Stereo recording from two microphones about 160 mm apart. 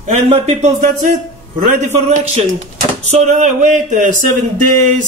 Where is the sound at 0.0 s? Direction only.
40° right (ahead or behind).